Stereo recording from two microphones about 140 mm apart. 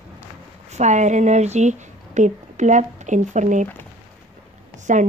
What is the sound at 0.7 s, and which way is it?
A woman's voice, 55° right (ahead or behind).